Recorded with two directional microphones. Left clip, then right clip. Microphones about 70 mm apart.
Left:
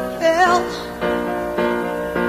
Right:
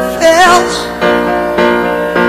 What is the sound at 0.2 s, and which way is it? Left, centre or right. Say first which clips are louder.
Music: right 9 dB; left.